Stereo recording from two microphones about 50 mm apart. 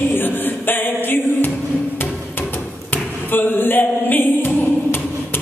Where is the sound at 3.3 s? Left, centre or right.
Left.